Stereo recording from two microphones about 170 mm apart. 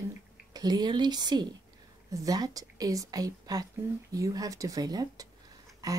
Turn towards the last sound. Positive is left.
turn(degrees=-20)  # may be behind; listen again after turning